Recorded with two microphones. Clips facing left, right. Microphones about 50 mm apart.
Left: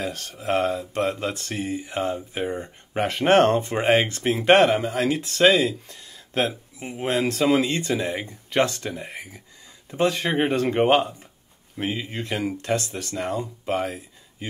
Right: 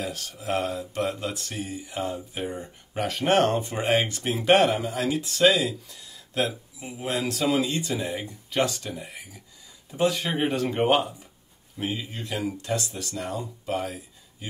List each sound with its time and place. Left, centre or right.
0.0 s speech: left